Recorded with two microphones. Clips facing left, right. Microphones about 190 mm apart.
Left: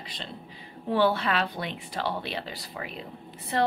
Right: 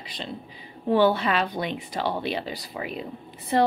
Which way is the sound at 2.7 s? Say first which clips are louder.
Right 5 dB; 10° right (ahead or behind).